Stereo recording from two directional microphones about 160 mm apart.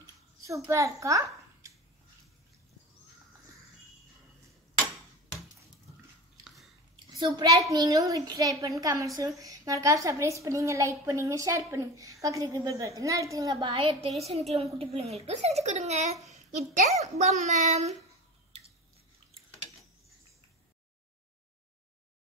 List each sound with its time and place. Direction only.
0.7 s a child's voice: 20° right (ahead or behind)
6.4 s biting: centre (ahead or behind)
7.1 s a child's voice: 30° right (ahead or behind); by 17.9 s 45° right (ahead or behind)